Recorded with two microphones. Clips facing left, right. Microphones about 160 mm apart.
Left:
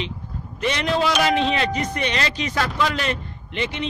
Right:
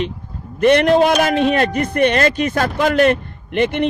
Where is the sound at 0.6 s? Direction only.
55° right (ahead or behind).